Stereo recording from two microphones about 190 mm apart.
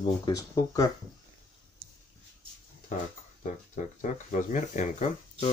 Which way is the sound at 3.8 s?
40° left (ahead or behind).